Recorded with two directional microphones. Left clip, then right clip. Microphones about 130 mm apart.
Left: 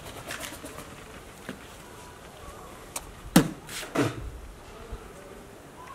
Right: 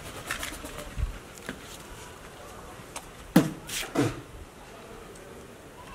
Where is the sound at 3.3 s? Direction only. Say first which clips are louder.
Left 1 dB; 35° left (ahead or behind).